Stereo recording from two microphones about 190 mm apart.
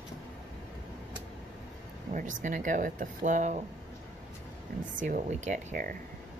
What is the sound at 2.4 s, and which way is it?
Speech, 40° right (ahead or behind).